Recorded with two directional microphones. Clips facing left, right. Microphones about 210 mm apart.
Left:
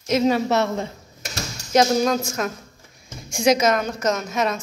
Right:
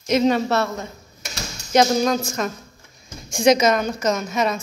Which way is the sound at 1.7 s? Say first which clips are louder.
Right 1 dB; centre (ahead or behind).